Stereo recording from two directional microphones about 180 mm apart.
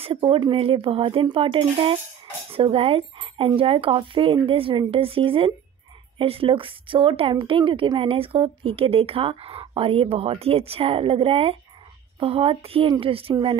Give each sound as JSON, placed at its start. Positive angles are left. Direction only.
{"t": 0.0, "sound": "a woman's voice", "side_deg": -30}